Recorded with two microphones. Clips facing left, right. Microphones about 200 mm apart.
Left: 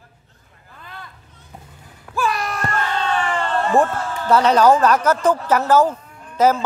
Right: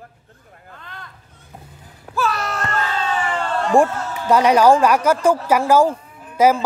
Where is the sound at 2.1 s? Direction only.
15° left (ahead or behind).